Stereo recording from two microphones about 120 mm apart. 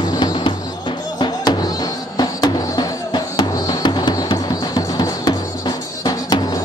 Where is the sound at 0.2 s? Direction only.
45° left (ahead or behind).